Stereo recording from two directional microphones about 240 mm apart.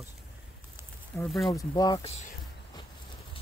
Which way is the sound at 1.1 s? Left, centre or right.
Centre.